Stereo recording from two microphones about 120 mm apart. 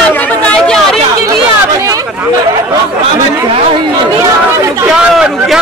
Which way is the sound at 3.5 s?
40° right (ahead or behind).